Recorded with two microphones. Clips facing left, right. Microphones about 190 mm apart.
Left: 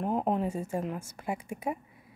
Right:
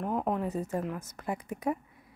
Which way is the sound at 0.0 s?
25° left (ahead or behind).